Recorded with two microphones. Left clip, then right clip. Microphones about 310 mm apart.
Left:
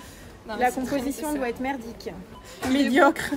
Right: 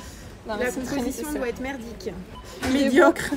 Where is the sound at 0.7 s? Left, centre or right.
Centre.